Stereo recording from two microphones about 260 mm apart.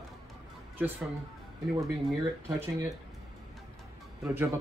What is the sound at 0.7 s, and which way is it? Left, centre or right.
Speech, centre.